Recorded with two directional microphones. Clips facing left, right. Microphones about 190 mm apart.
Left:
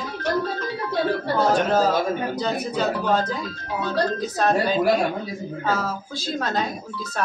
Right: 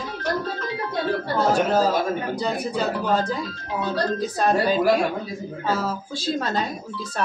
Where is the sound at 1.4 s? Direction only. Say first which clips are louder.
Even; 5° right (ahead or behind).